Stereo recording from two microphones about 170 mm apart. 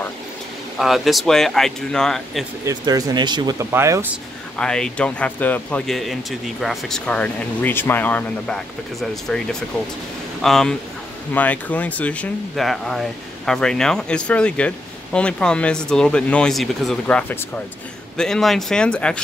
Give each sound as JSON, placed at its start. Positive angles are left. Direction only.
{"t": 0.7, "sound": "speech", "side_deg": 0}
{"t": 2.6, "sound": "speech", "side_deg": -20}
{"t": 3.7, "sound": "speech", "side_deg": -15}
{"t": 4.6, "sound": "speech", "side_deg": 5}